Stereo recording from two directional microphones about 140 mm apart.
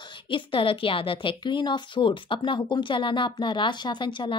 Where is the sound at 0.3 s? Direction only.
40° left (ahead or behind).